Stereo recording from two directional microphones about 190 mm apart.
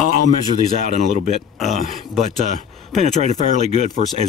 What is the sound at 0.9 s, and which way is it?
Speech, 35° left (ahead or behind).